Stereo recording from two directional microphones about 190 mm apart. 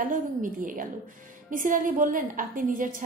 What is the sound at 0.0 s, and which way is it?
A woman's voice, 45° right (ahead or behind).